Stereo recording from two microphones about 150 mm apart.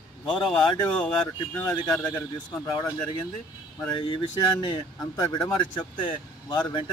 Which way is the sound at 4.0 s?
30° left (ahead or behind).